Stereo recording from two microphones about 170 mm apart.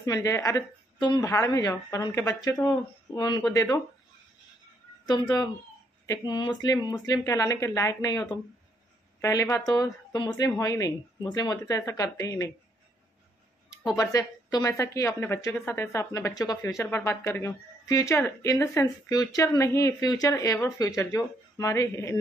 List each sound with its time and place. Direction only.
0.0 s a woman's voice: 20° left (ahead or behind)
5.0 s a woman's voice: 25° left (ahead or behind)
13.9 s a woman's voice: 20° left (ahead or behind)